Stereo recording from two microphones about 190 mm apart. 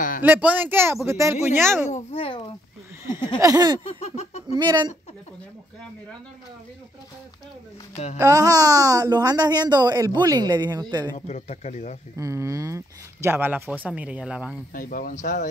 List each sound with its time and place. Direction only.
0.2 s speech: 10° right (ahead or behind)
1.9 s a child's voice: 35° left (ahead or behind)
3.3 s speech: 20° right (ahead or behind)
3.8 s baby laughter: 35° left (ahead or behind)
4.6 s speech: 20° right (ahead or behind)
8.2 s speech: 20° right (ahead or behind)
11.1 s speech: 35° left (ahead or behind)
12.2 s speech: 15° right (ahead or behind)
14.7 s speech: 50° left (ahead or behind)